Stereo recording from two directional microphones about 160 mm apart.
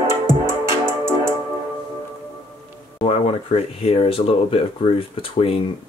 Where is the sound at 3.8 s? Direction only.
35° left (ahead or behind).